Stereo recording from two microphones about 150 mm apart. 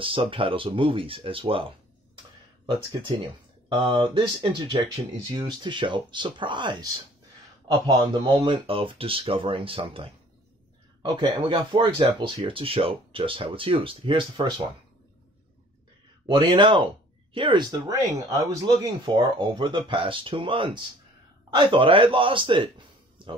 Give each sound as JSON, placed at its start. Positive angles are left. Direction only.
{"t": 0.0, "sound": "speech", "side_deg": -35}
{"t": 3.6, "sound": "speech", "side_deg": -35}
{"t": 16.3, "sound": "speech", "side_deg": -30}
{"t": 19.1, "sound": "speech", "side_deg": -30}